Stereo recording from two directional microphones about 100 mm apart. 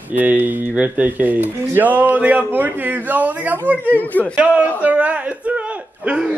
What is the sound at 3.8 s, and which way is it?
Speech, 15° left (ahead or behind).